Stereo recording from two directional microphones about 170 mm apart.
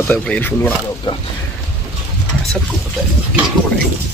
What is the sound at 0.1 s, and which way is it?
Speech, 10° left (ahead or behind).